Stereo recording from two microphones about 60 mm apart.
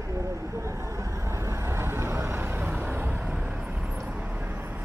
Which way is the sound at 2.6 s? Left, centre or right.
Right.